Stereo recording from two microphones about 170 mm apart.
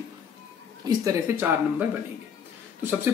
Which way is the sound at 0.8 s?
20° right (ahead or behind).